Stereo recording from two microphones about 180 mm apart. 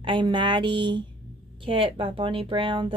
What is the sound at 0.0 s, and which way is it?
A woman's voice, 25° right (ahead or behind).